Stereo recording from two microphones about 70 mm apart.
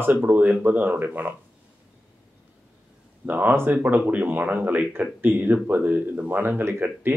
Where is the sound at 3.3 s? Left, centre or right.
Right.